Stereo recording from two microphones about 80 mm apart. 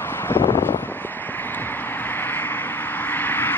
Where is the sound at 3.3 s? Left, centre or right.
Left.